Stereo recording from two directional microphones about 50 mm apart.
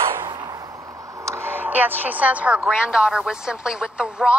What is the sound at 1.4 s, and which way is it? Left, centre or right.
A woman's voice, right.